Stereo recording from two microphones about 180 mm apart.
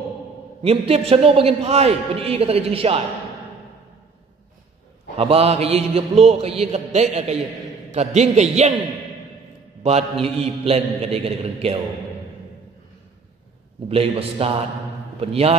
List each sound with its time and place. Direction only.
0.6 s a man's voice: 35° right (ahead or behind)
5.1 s a man's voice: 35° right (ahead or behind)
10.2 s a man's voice: 35° right (ahead or behind)
13.8 s a man's voice: 30° right (ahead or behind)